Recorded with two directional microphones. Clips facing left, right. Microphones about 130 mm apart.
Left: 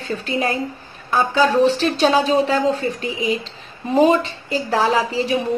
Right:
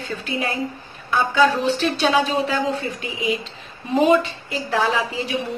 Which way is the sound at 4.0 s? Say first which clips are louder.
Left 2 dB; 35° left (ahead or behind).